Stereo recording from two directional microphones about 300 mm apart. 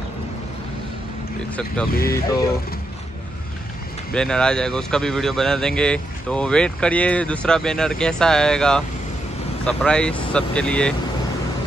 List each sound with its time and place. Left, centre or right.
1.9 s speech: left
4.1 s speech: centre